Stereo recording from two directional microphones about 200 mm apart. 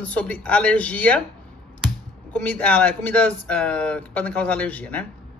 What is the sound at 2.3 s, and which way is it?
Speech, 10° left (ahead or behind).